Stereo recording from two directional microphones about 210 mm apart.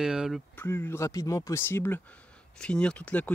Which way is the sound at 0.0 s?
Centre (ahead or behind).